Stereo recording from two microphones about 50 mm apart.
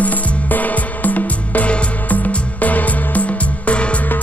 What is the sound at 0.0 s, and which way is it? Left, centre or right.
Music, left.